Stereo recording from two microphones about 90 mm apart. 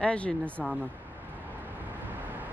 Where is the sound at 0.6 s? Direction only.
20° right (ahead or behind).